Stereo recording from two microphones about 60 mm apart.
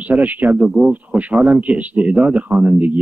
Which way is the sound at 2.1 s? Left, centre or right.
Centre.